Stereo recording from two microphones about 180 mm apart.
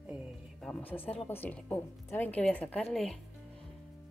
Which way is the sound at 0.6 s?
5° left (ahead or behind).